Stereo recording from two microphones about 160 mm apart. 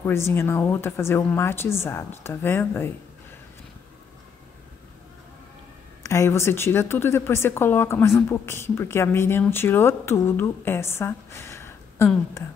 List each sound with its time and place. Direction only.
0.0 s speech: 15° left (ahead or behind)
6.0 s speech: 20° left (ahead or behind)